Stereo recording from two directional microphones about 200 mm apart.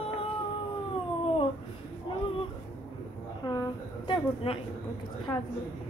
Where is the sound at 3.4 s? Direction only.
20° left (ahead or behind).